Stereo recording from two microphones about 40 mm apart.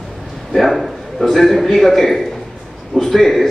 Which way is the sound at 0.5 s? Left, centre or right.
Centre.